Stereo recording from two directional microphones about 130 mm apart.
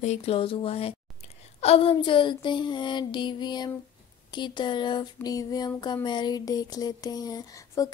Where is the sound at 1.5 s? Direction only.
50° left (ahead or behind).